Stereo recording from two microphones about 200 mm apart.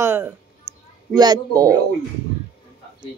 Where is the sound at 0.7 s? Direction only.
20° right (ahead or behind).